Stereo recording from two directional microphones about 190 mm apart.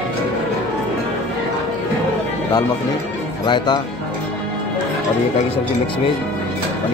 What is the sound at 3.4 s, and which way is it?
Speech, 25° left (ahead or behind).